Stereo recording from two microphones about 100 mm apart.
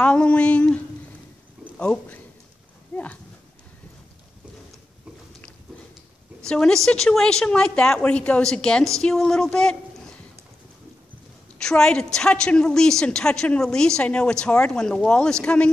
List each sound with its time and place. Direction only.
0.0 s a woman's voice: 10° left (ahead or behind)
2.9 s a sound: 15° left (ahead or behind)
6.4 s a woman's voice: 5° left (ahead or behind)
11.5 s a woman's voice: 10° left (ahead or behind)